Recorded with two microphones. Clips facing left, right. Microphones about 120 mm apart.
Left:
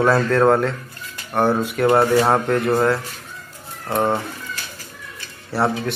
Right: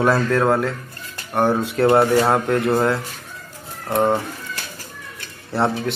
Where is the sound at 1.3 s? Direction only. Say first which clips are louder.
Even; 15° right (ahead or behind).